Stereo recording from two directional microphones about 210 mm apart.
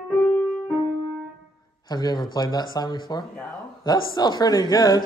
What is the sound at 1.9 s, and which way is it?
A man's voice, 20° left (ahead or behind).